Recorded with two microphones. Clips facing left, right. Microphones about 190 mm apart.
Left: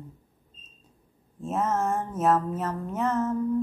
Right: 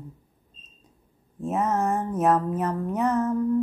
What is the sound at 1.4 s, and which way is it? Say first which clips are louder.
Speech: right 2 dB; 15° right (ahead or behind).